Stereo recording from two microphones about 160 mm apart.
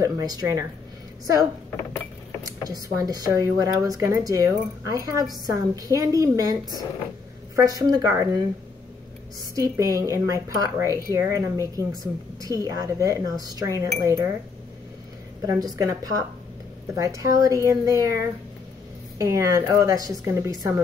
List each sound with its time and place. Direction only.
0.0 s a woman's voice: 25° right (ahead or behind)
2.7 s a woman's voice: 25° right (ahead or behind)
9.6 s a woman's voice: 20° right (ahead or behind)
15.4 s a woman's voice: 20° right (ahead or behind)